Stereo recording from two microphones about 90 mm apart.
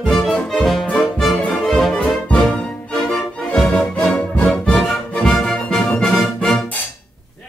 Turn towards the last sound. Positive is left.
turn(degrees=5)  # may be behind; listen again after turning